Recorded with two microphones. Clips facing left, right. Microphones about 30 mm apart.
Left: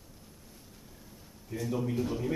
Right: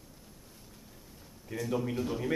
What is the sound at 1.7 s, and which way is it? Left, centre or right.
Speech, right.